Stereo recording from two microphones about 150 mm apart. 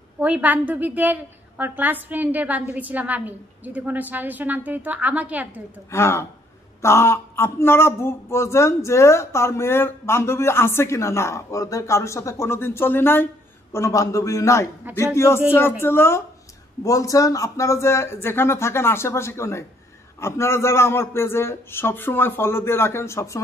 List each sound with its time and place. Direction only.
0.2 s a woman's voice: 10° right (ahead or behind)
5.9 s speech: 20° left (ahead or behind)